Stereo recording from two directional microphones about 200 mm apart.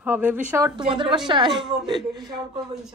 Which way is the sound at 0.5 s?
20° right (ahead or behind).